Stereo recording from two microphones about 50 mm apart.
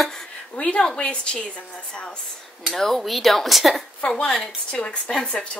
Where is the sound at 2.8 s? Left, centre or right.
Centre.